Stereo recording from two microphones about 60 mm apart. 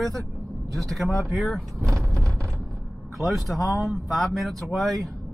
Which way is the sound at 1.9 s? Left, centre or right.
Right.